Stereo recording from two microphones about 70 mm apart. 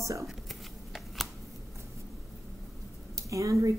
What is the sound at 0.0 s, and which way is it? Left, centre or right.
Speech, right.